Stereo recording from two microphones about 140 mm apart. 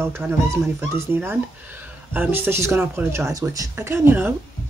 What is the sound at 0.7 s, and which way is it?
Speech, 15° right (ahead or behind).